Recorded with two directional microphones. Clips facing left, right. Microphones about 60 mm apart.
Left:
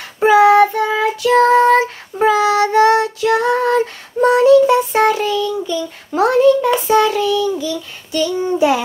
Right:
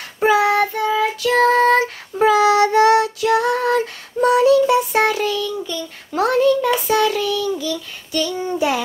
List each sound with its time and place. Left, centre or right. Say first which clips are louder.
0.3 s child singing: left 7 dB; left
1.2 s child singing: left 4 dB; centre
2.1 s child singing: even; left